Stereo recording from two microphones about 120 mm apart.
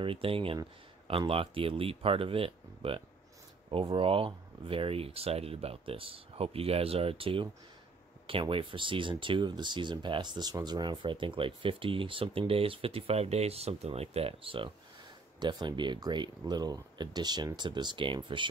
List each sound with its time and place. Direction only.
0.0 s speech: 50° right (ahead or behind)